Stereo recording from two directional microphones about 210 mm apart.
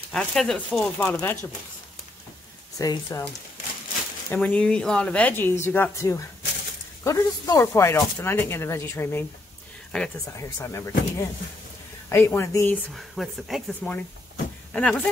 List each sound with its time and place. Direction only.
0.1 s speech: 5° left (ahead or behind)
2.8 s speech: 15° left (ahead or behind)
4.3 s speech: 5° left (ahead or behind)
10.2 s speech: 15° left (ahead or behind)
12.9 s speech: centre (ahead or behind)